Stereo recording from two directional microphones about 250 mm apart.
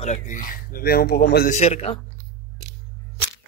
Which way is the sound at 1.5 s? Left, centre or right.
Left.